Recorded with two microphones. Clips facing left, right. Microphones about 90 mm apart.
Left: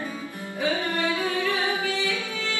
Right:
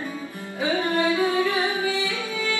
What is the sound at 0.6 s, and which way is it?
Music, 20° right (ahead or behind).